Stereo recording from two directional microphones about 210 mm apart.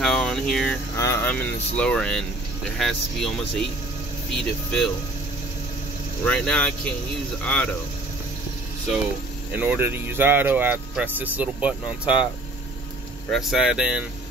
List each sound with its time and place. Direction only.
0.0 s a sound: 5° left (ahead or behind)
0.9 s speech: 15° left (ahead or behind)
6.2 s speech: 5° left (ahead or behind)
9.6 s speech: 10° right (ahead or behind)
13.3 s speech: centre (ahead or behind)